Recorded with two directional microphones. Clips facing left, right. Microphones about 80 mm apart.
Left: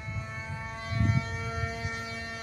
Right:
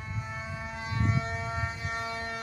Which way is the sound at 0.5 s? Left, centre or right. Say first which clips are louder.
Left 1 dB; centre.